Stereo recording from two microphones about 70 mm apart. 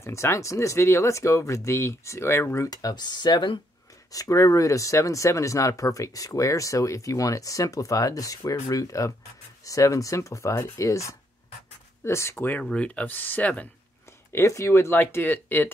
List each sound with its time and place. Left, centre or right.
0.0 s speech: left
2.7 s speech: left
4.1 s speech: left
12.6 s speech: centre
14.3 s speech: left